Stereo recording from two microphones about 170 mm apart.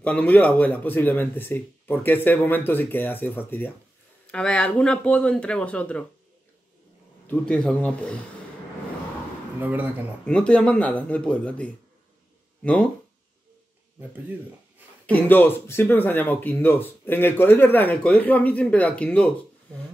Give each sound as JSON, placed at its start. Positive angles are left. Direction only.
{"t": 0.0, "sound": "speech", "side_deg": 10}
{"t": 7.2, "sound": "speech", "side_deg": 5}
{"t": 9.6, "sound": "speech", "side_deg": -10}
{"t": 10.2, "sound": "speech", "side_deg": 5}
{"t": 15.0, "sound": "speech", "side_deg": 10}